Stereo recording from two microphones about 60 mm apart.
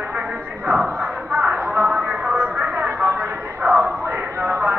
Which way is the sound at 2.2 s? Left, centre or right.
Right.